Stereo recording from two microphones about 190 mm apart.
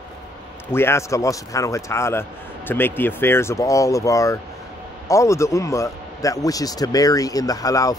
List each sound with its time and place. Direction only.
0.7 s a man's voice: 10° left (ahead or behind)